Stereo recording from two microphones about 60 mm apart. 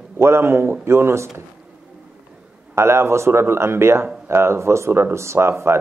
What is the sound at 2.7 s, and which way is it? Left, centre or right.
Speech, right.